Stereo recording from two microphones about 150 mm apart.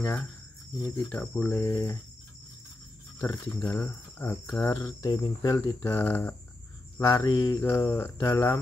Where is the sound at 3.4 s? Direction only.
20° left (ahead or behind).